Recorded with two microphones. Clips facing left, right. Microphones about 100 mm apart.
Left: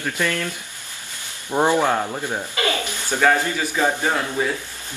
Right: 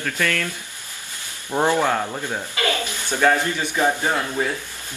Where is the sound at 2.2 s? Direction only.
15° left (ahead or behind).